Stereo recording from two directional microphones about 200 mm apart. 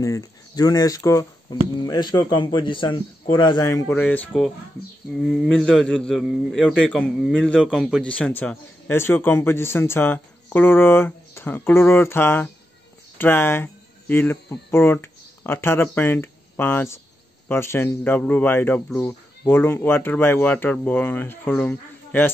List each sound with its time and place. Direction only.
0.0 s a man's voice: 15° left (ahead or behind)